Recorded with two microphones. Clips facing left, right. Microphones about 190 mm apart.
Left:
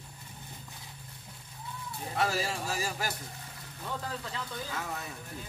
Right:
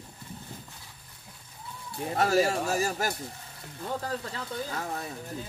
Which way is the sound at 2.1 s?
45° right (ahead or behind).